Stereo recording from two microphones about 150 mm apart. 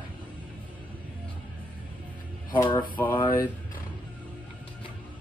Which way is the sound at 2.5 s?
30° left (ahead or behind).